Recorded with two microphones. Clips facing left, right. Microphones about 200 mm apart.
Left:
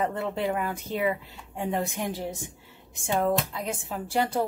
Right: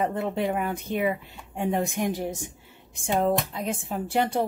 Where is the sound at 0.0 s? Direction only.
20° right (ahead or behind).